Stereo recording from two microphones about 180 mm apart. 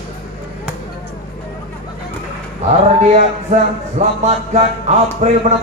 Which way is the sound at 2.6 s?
40° right (ahead or behind).